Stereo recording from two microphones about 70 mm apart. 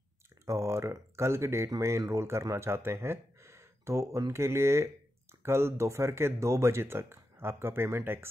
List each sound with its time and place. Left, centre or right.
0.5 s speech: right